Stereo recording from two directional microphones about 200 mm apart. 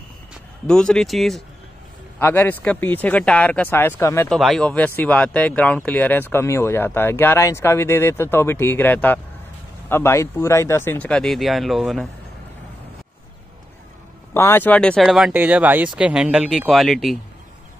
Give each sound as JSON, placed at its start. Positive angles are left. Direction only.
{"t": 0.7, "sound": "speech", "side_deg": 5}
{"t": 4.3, "sound": "speech", "side_deg": 0}
{"t": 14.3, "sound": "speech", "side_deg": 10}